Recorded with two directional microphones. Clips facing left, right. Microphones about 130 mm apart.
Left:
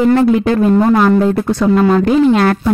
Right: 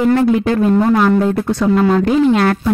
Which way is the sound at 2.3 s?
45° left (ahead or behind).